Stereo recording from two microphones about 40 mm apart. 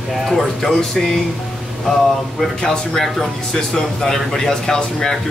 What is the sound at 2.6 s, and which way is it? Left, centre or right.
Speech, centre.